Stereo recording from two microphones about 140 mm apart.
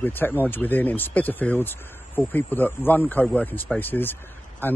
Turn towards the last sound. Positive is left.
turn(degrees=15)  # may be behind; listen again after turning